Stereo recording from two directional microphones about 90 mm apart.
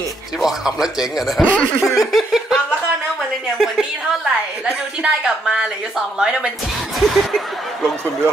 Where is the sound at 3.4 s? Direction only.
5° right (ahead or behind).